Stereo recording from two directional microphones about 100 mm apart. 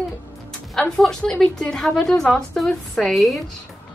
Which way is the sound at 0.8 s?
5° left (ahead or behind).